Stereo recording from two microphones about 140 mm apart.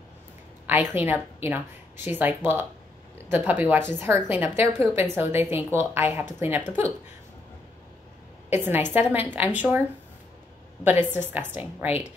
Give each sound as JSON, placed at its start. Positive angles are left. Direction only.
{"t": 0.7, "sound": "a woman's voice", "side_deg": -15}
{"t": 8.5, "sound": "a woman's voice", "side_deg": -15}